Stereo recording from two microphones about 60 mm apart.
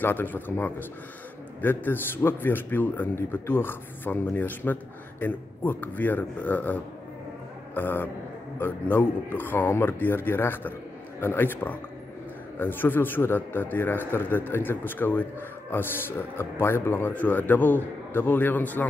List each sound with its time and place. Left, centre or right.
0.0 s a man's voice: left
17.1 s a man's voice: left